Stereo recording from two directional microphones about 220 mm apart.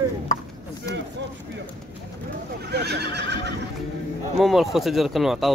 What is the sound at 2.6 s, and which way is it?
Neigh, 50° right (ahead or behind).